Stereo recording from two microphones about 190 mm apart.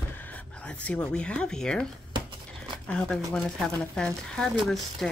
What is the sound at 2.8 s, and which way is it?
A woman's voice, 5° left (ahead or behind).